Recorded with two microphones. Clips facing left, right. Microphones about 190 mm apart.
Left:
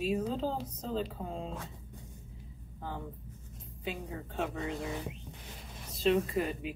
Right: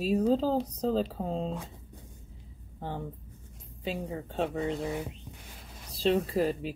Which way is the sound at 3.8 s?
30° right (ahead or behind).